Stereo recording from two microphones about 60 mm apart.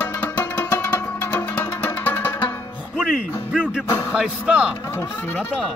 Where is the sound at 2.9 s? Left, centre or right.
Centre.